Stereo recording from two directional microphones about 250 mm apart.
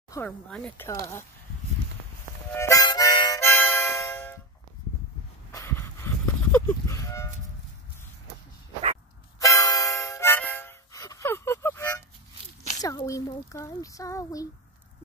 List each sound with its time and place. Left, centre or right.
0.1 s speech: centre
2.5 s harmonica: centre
5.5 s livestock: centre
9.4 s harmonica: centre
12.8 s speech: centre